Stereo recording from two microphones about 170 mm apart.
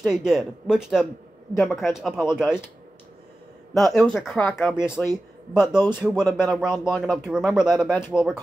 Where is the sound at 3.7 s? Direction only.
Centre (ahead or behind).